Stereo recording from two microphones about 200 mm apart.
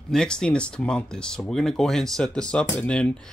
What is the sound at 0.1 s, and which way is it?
Speech, 5° left (ahead or behind).